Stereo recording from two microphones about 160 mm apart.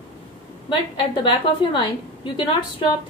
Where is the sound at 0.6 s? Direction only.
30° left (ahead or behind).